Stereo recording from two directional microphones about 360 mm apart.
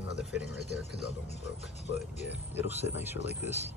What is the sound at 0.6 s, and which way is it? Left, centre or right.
Speech, left.